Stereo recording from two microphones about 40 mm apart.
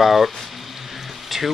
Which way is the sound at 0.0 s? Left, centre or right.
Centre.